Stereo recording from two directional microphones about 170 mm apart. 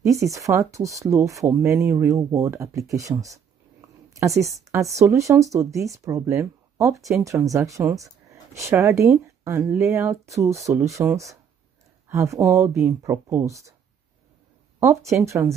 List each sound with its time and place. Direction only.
0.0 s speech: 20° right (ahead or behind)
14.8 s speech: 15° right (ahead or behind)